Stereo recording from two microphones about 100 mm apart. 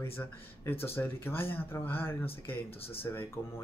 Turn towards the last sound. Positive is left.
turn(degrees=20)  # may be behind; listen again after turning